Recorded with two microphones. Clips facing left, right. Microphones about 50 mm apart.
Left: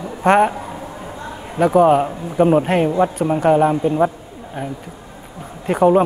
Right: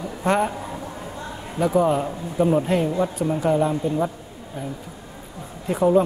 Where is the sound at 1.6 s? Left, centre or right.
Left.